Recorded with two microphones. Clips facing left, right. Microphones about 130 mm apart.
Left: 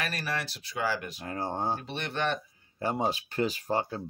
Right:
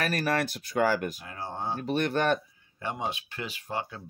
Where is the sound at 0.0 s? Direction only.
50° right (ahead or behind).